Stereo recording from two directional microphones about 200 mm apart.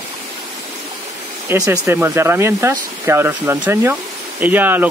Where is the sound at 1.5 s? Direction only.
10° right (ahead or behind).